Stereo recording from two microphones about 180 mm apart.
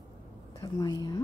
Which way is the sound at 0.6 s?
20° left (ahead or behind).